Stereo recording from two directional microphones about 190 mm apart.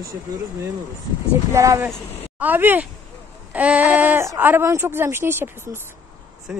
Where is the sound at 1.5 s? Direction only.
15° right (ahead or behind).